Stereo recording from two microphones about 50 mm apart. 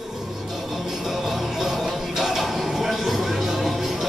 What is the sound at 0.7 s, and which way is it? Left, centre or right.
Music, centre.